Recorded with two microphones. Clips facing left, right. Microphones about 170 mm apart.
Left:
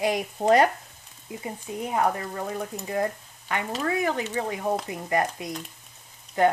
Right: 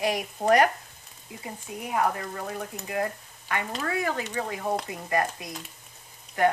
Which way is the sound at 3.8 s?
20° left (ahead or behind).